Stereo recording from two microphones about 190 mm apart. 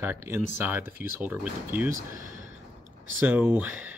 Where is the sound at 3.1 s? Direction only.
10° right (ahead or behind).